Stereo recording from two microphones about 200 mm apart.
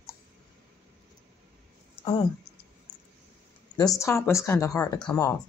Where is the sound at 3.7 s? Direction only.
20° left (ahead or behind).